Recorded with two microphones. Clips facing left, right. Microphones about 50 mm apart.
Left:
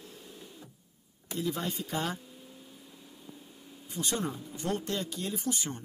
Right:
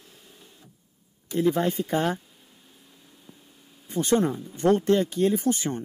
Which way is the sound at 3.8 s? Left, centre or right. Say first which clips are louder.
Right 11 dB; right.